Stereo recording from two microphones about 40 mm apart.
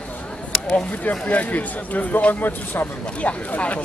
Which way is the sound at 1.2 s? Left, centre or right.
Left.